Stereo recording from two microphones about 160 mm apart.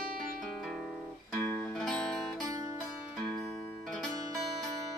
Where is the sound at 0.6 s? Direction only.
Centre (ahead or behind).